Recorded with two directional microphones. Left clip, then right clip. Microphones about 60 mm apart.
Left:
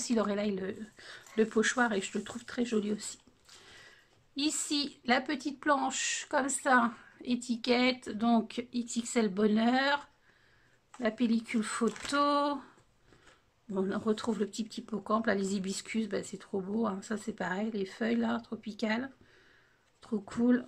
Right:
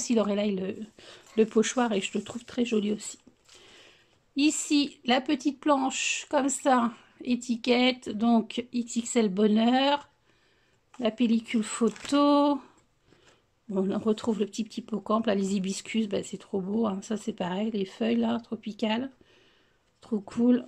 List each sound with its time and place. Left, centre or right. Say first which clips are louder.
0.0 s speech: right 5 dB; right